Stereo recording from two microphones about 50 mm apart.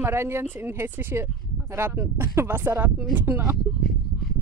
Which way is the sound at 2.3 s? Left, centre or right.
Right.